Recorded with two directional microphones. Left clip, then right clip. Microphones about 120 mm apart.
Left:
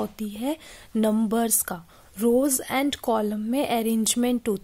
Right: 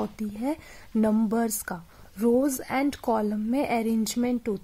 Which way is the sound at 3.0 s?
15° left (ahead or behind).